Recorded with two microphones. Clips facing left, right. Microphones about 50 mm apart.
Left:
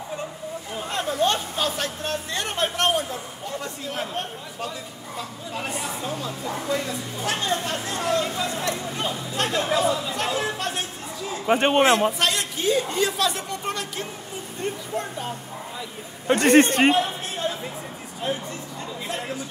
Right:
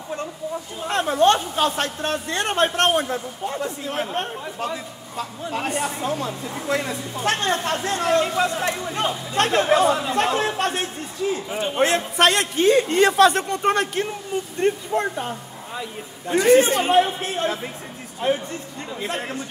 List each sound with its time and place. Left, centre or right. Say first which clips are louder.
0.8 s a man's voice: right 6 dB; right
5.5 s a man's voice: right 5 dB; right
7.2 s a man's voice: right 4 dB; right
11.4 s a man's voice: left 7 dB; left
12.2 s a man's voice: right 7 dB; right
16.3 s a man's voice: right 1 dB; left
16.9 s speech: right 5 dB; right